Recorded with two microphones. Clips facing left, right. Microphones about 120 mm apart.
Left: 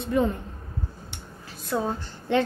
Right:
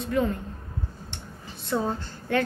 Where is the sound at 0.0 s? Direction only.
20° left (ahead or behind).